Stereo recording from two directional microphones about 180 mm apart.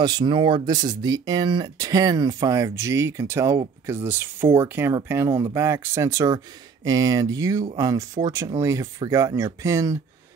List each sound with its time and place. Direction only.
0.0 s speech: 25° right (ahead or behind)